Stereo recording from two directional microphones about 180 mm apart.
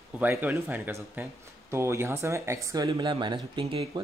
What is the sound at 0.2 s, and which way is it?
Speech, 10° right (ahead or behind).